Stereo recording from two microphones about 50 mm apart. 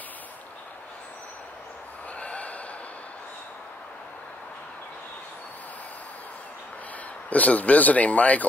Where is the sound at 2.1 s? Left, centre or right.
Left.